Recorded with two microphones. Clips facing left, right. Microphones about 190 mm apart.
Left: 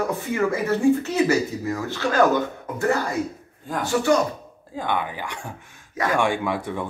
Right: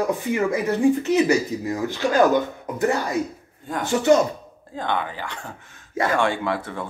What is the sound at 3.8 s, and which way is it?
Speech, 20° right (ahead or behind).